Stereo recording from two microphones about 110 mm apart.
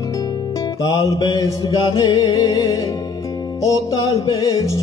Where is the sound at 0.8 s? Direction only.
40° left (ahead or behind).